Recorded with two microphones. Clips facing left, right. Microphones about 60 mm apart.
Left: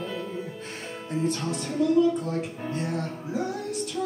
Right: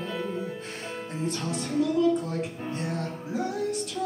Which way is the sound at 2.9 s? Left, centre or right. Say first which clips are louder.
Left 1 dB; centre.